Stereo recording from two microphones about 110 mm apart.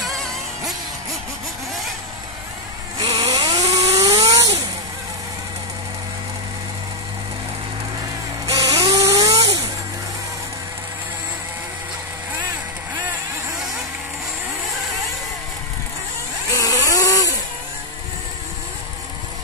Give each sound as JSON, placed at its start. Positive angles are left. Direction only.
{"t": 0.0, "sound": "music", "side_deg": 0}
{"t": 3.2, "sound": "vehicle", "side_deg": -35}
{"t": 4.0, "sound": "electric toothbrush", "side_deg": -35}
{"t": 8.5, "sound": "electric toothbrush", "side_deg": -30}
{"t": 16.5, "sound": "a sound", "side_deg": 30}